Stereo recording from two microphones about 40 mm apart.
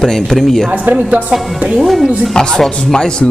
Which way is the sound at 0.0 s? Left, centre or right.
Centre.